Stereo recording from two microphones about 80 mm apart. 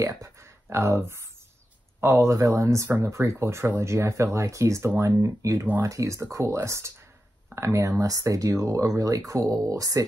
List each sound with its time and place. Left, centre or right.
0.0 s speech: right
2.3 s speech: right